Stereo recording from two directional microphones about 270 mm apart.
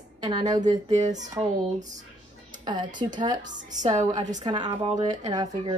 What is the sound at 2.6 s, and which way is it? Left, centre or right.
Speech, centre.